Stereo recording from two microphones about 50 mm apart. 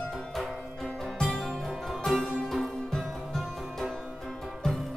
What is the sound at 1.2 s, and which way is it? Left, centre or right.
Music, centre.